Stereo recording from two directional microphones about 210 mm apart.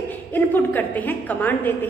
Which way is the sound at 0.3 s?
10° left (ahead or behind).